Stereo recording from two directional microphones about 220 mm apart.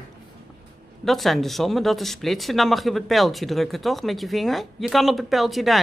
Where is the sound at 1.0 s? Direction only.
Centre (ahead or behind).